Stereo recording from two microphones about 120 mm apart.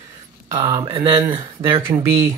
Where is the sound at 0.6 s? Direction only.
50° right (ahead or behind).